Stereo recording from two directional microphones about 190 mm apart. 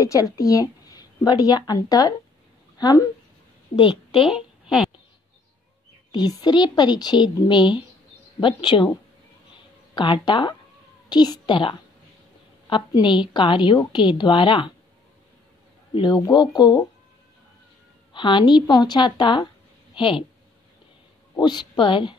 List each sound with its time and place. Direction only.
0.0 s a woman's voice: 20° left (ahead or behind)
4.2 s a woman's voice: 5° right (ahead or behind)
6.1 s a woman's voice: 20° left (ahead or behind)
9.9 s a woman's voice: 25° left (ahead or behind)
15.9 s a woman's voice: 25° left (ahead or behind)
18.1 s a woman's voice: 25° left (ahead or behind)
21.4 s a woman's voice: 25° left (ahead or behind)